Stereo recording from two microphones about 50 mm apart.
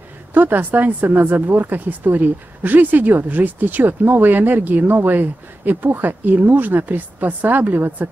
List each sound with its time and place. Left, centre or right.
0.3 s speech: right